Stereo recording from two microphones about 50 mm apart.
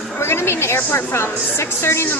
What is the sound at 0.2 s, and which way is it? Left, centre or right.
Chatter, left.